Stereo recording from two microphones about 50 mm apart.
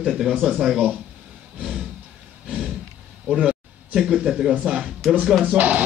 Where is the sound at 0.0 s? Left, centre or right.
Centre.